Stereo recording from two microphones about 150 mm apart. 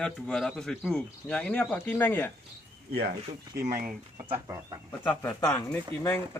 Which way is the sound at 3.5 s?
70° right (ahead or behind).